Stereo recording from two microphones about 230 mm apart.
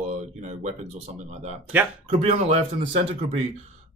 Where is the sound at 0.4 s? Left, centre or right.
Right.